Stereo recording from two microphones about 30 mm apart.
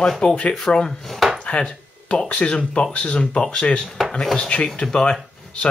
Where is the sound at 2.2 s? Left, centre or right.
Left.